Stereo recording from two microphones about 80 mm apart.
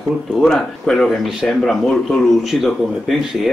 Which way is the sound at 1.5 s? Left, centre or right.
Centre.